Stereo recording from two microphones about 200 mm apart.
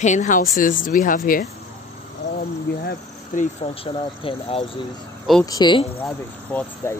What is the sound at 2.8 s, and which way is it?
Speech, 40° left (ahead or behind).